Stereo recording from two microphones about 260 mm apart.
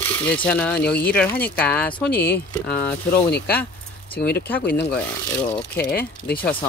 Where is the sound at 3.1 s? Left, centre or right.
Left.